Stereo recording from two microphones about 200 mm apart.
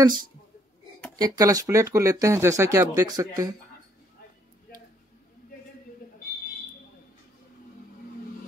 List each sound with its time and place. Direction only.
0.0 s speech: 20° right (ahead or behind)